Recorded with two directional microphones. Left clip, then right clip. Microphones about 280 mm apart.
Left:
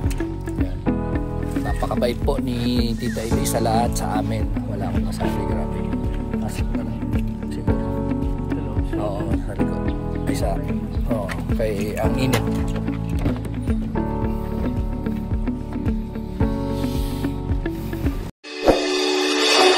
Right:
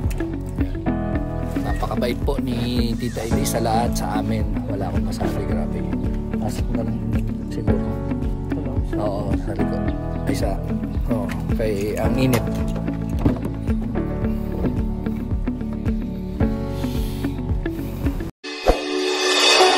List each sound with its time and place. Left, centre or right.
0.2 s music: centre
2.0 s speech: centre
5.9 s music: centre
11.6 s speech: centre
18.6 s music: centre